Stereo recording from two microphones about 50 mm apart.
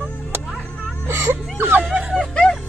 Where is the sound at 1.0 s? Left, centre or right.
Right.